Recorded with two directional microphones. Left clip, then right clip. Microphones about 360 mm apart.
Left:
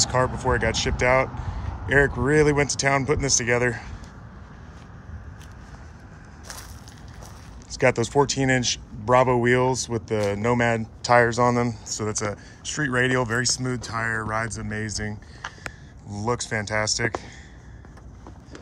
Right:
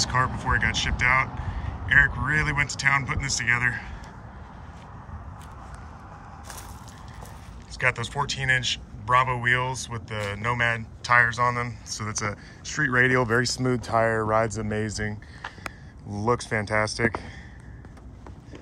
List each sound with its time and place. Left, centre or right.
0.0 s a man's voice: centre
7.7 s a man's voice: centre